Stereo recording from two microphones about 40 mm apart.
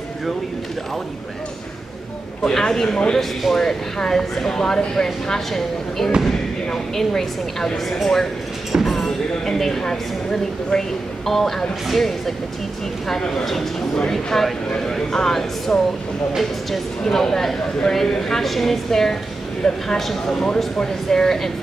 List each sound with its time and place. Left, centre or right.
2.4 s speech: centre
17.0 s speech: centre